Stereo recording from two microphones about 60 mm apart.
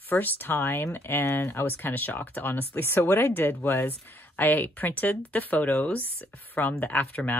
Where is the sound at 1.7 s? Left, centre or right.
Left.